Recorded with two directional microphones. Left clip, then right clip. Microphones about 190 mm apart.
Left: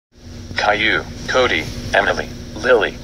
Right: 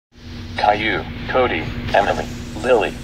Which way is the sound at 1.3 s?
25° left (ahead or behind).